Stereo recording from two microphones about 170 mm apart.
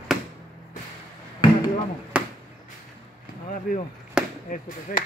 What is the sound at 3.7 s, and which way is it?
Speech, centre (ahead or behind).